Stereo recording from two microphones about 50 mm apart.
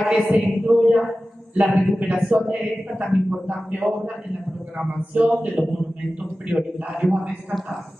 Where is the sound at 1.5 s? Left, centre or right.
Right.